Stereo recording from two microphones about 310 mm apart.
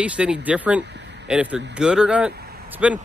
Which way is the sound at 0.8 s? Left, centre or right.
Right.